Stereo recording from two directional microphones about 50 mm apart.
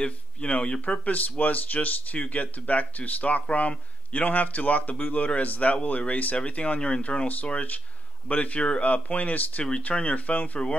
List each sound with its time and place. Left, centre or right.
0.0 s speech: left